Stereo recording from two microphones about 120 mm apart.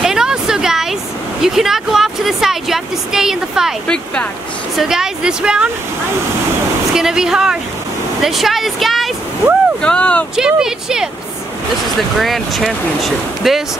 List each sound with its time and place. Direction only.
0.0 s a sound: 5° right (ahead or behind)
1.4 s speech: 5° right (ahead or behind)
3.8 s speech: 10° left (ahead or behind)
4.7 s speech: 5° right (ahead or behind)
6.9 s speech: 5° right (ahead or behind)
10.3 s speech: 5° right (ahead or behind)
12.2 s speech: centre (ahead or behind)